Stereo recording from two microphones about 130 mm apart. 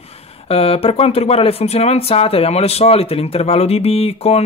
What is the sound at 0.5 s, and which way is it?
Speech, 50° left (ahead or behind).